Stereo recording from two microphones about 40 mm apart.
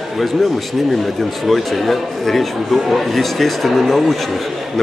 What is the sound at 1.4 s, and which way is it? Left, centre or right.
A man's voice, centre.